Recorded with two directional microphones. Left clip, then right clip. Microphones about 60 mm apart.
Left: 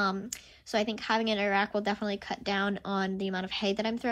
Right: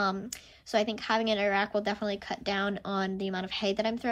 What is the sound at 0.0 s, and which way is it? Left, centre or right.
Speech, right.